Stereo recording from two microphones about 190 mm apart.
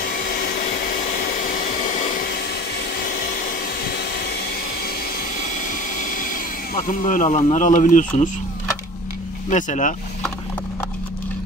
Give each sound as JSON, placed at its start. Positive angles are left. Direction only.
{"t": 0.0, "sound": "vacuum cleaner", "side_deg": 55}
{"t": 5.4, "sound": "vehicle", "side_deg": 40}
{"t": 9.5, "sound": "speech", "side_deg": 40}